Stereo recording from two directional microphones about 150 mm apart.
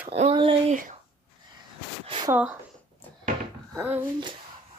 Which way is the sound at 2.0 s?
40° right (ahead or behind).